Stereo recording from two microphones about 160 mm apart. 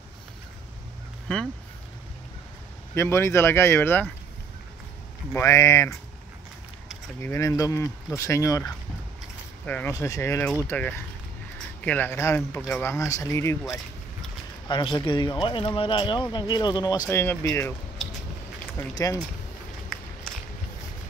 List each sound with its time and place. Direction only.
2.9 s speech: 15° left (ahead or behind)
5.3 s speech: 20° left (ahead or behind)
7.2 s speech: 15° left (ahead or behind)
9.7 s speech: 10° left (ahead or behind)
9.9 s speech: 20° left (ahead or behind)
14.7 s speech: 30° left (ahead or behind)
19.9 s walk: 5° left (ahead or behind)